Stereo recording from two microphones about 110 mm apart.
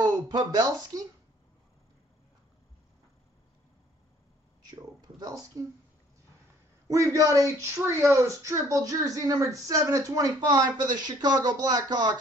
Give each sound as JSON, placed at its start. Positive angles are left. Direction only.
{"t": 0.0, "sound": "speech", "side_deg": -40}
{"t": 4.6, "sound": "speech", "side_deg": -35}
{"t": 6.9, "sound": "speech", "side_deg": -30}